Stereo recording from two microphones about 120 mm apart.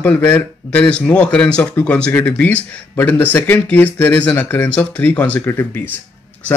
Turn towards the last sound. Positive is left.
turn(degrees=20)  # may be behind; listen again after turning